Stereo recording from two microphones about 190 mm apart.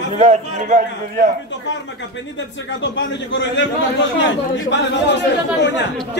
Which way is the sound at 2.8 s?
75° left (ahead or behind).